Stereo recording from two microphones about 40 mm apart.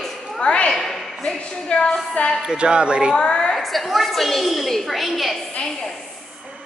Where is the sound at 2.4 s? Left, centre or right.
Centre.